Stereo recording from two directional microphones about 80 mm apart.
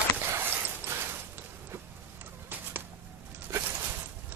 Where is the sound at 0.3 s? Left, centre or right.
Right.